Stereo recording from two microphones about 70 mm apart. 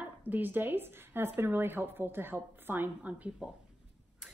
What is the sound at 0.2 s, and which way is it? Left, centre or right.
Speech, right.